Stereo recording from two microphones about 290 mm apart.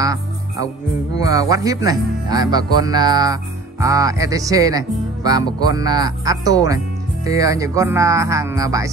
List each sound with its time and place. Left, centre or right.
0.0 s music: centre
1.2 s speech: centre